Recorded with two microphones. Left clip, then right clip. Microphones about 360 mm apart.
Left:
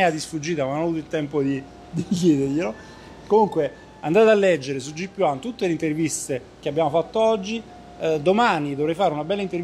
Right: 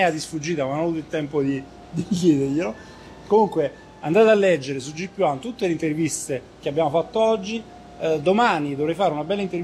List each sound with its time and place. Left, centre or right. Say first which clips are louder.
0.0 s speech: even; left
4.0 s speech: even; left